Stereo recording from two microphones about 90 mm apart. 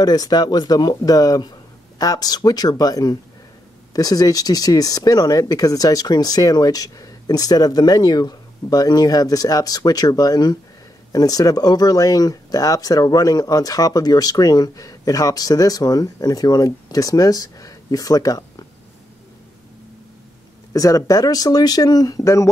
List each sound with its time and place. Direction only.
0.0 s speech: 45° left (ahead or behind)
20.7 s speech: 40° left (ahead or behind)